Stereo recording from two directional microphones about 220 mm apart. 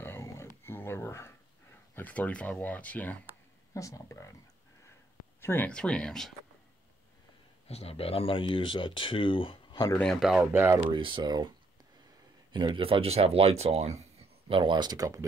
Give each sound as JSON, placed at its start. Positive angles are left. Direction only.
{"t": 0.0, "sound": "a sound", "side_deg": 10}
{"t": 2.0, "sound": "speech", "side_deg": 5}
{"t": 5.4, "sound": "speech", "side_deg": 10}
{"t": 7.6, "sound": "speech", "side_deg": 30}
{"t": 9.9, "sound": "speech", "side_deg": 0}
{"t": 10.9, "sound": "speech", "side_deg": -20}
{"t": 12.5, "sound": "speech", "side_deg": -20}